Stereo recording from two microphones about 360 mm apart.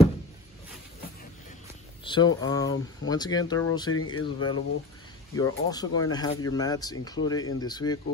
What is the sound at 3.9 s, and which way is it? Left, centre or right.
Speech, left.